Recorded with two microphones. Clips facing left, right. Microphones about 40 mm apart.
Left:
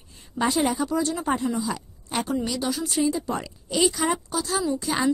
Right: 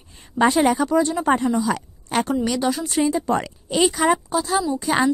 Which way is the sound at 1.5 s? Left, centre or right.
Right.